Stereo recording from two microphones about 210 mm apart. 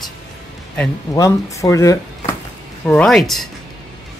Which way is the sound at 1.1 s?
15° left (ahead or behind).